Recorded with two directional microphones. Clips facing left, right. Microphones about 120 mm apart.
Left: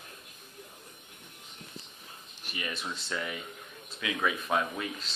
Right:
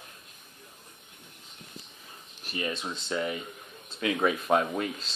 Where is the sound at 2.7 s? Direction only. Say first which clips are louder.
Right 2 dB; 20° right (ahead or behind).